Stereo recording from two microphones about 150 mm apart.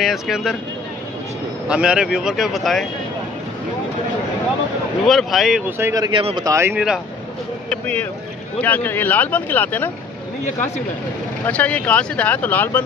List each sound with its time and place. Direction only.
0.0 s speech: centre (ahead or behind)
1.7 s speech: 5° right (ahead or behind)
5.0 s speech: centre (ahead or behind)
5.8 s speech: 20° right (ahead or behind)
7.7 s speech: 10° left (ahead or behind)
11.4 s speech: 10° left (ahead or behind)